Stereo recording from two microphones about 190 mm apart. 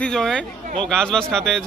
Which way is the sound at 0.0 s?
5° left (ahead or behind).